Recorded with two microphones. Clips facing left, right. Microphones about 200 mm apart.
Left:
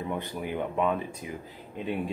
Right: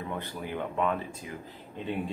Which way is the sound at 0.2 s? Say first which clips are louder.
Left 3 dB; 15° left (ahead or behind).